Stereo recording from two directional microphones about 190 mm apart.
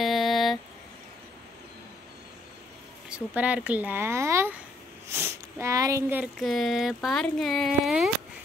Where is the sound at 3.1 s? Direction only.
5° right (ahead or behind).